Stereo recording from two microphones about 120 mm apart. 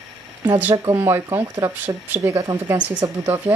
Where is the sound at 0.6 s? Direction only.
15° right (ahead or behind).